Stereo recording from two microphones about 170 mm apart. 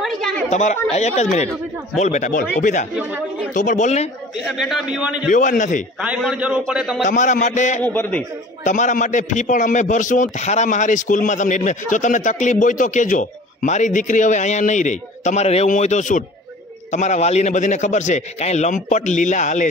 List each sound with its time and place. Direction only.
0.0 s a sound: centre (ahead or behind)
0.5 s a man's voice: 45° left (ahead or behind)
3.0 s speech: 5° right (ahead or behind)
3.5 s a man's voice: 45° left (ahead or behind)
4.5 s a man's voice: centre (ahead or behind)
5.3 s a man's voice: 50° left (ahead or behind)
5.9 s a man's voice: 5° right (ahead or behind)
7.1 s a man's voice: 45° left (ahead or behind)
7.8 s a man's voice: 10° left (ahead or behind)
8.6 s a man's voice: 45° left (ahead or behind)